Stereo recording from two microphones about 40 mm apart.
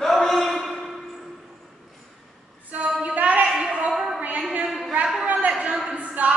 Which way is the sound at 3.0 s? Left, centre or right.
Right.